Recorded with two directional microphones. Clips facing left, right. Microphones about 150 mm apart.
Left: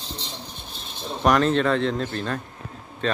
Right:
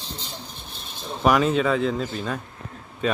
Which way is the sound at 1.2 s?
5° right (ahead or behind).